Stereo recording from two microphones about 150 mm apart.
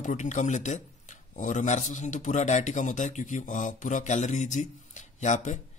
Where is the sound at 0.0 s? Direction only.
55° left (ahead or behind).